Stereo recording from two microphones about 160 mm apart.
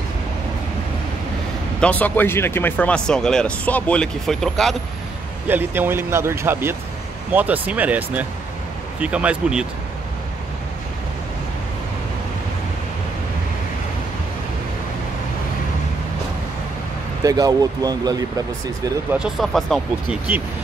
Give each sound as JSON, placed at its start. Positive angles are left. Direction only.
{"t": 1.8, "sound": "speech", "side_deg": 10}
{"t": 5.5, "sound": "speech", "side_deg": -15}
{"t": 17.2, "sound": "speech", "side_deg": -20}
{"t": 19.1, "sound": "speech", "side_deg": 0}